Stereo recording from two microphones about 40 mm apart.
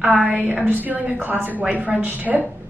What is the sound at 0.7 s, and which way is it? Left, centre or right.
Speech, right.